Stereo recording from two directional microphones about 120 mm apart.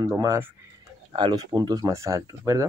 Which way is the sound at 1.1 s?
40° right (ahead or behind).